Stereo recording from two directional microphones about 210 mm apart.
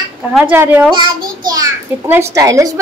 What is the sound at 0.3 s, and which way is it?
A woman's voice, 5° right (ahead or behind).